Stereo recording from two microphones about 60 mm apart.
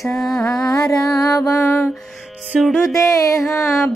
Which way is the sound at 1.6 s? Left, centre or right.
Left.